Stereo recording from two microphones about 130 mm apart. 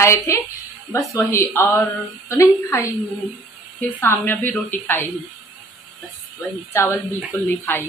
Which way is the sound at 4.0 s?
15° left (ahead or behind).